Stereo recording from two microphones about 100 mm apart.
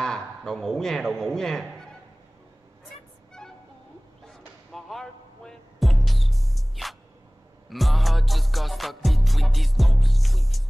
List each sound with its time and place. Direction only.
0.4 s music: 5° left (ahead or behind)
4.7 s music: 5° left (ahead or behind)